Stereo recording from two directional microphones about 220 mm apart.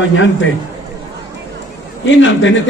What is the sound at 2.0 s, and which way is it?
Speech, 55° left (ahead or behind).